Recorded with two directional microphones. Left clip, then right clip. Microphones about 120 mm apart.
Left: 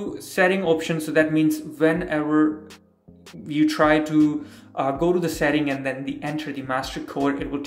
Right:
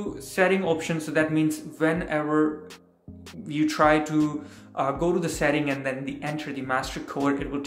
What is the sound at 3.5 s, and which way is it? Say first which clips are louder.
Speech: left 2 dB; 25° left (ahead or behind).